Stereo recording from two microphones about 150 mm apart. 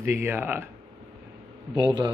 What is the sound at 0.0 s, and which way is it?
Speech, 15° right (ahead or behind).